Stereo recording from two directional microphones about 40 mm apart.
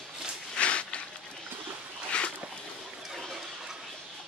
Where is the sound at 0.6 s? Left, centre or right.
Left.